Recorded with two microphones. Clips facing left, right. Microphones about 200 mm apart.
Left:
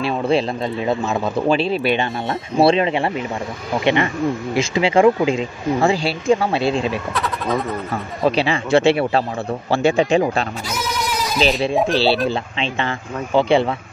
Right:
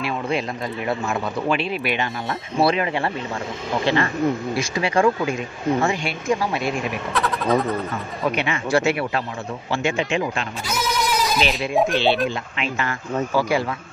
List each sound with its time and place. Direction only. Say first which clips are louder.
0.0 s speech: left 6 dB; 30° left (ahead or behind)
7.2 s speech: right 1 dB; 5° left (ahead or behind)
7.9 s speech: left 5 dB; 30° left (ahead or behind)
11.7 s speech: left 2 dB; centre (ahead or behind)
12.3 s speech: left 4 dB; 30° left (ahead or behind)